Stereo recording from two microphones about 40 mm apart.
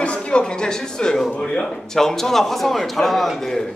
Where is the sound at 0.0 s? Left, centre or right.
Left; by 3.3 s centre.